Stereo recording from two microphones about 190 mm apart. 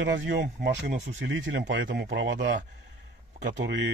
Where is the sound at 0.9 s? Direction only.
35° right (ahead or behind).